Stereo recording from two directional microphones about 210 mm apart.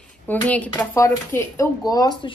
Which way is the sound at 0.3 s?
5° left (ahead or behind).